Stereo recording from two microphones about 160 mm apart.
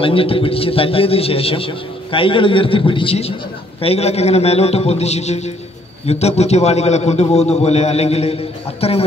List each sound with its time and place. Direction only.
0.0 s a man's voice: 35° left (ahead or behind)